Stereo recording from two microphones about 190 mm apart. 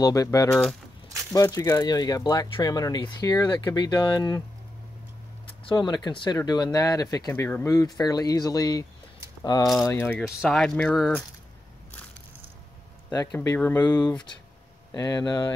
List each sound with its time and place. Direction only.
0.0 s speech: 20° left (ahead or behind)
5.7 s speech: 25° left (ahead or behind)
10.2 s speech: 5° right (ahead or behind)
13.4 s speech: 15° left (ahead or behind)